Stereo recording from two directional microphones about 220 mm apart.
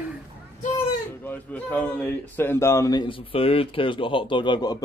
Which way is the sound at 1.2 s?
10° left (ahead or behind).